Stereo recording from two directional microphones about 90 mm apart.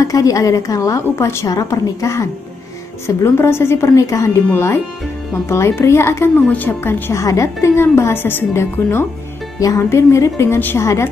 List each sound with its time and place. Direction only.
0.0 s a woman's voice: 40° left (ahead or behind)
5.5 s a woman's voice: 30° left (ahead or behind)
9.6 s a woman's voice: 35° left (ahead or behind)